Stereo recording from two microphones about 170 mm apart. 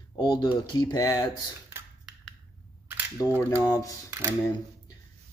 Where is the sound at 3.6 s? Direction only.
20° left (ahead or behind).